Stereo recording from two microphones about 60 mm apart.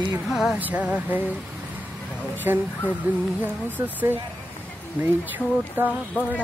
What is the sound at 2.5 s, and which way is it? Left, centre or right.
Speech, right.